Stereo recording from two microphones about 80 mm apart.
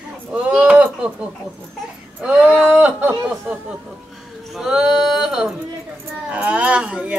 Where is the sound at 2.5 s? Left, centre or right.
Centre.